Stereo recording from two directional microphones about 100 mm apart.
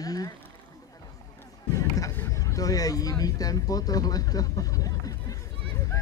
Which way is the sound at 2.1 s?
30° left (ahead or behind).